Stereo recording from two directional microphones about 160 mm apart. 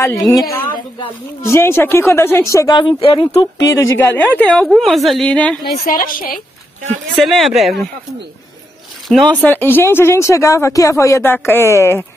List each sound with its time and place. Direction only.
0.3 s a woman's voice: 20° left (ahead or behind)
1.4 s a woman's voice: 15° left (ahead or behind); by 3.6 s 30° left (ahead or behind)
3.6 s speech: 15° left (ahead or behind)
5.9 s a woman's voice: 60° left (ahead or behind)
7.2 s speech: centre (ahead or behind)
9.1 s speech: 10° left (ahead or behind)